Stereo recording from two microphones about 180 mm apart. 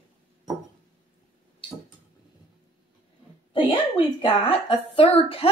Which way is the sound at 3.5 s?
30° left (ahead or behind).